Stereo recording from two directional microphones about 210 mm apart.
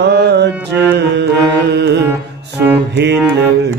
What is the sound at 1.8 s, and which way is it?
Music, 55° right (ahead or behind).